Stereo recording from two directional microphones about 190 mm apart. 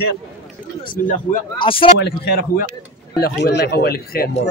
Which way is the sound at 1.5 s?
25° left (ahead or behind).